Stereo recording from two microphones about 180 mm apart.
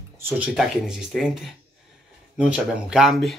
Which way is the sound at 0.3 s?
Centre (ahead or behind).